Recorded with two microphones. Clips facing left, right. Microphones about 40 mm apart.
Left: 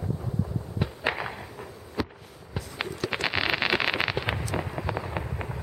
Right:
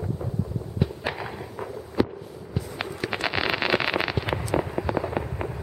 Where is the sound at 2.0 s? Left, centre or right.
Centre.